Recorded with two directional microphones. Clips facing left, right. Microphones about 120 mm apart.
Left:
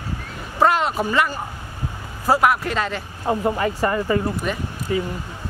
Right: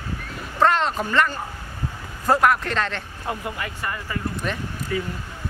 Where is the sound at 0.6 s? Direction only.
10° left (ahead or behind).